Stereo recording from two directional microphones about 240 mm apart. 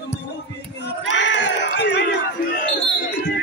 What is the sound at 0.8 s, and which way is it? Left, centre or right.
Crowd, left.